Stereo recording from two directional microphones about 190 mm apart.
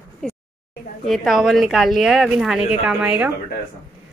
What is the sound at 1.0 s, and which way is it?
Speech, centre (ahead or behind).